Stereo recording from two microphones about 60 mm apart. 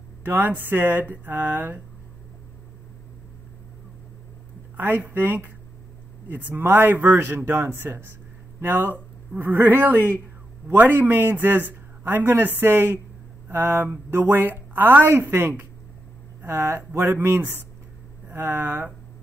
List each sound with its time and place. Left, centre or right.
0.2 s a man's voice: right
4.7 s a man's voice: right
15.0 s a man's voice: right